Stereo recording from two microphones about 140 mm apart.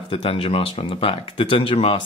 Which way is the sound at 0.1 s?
40° left (ahead or behind).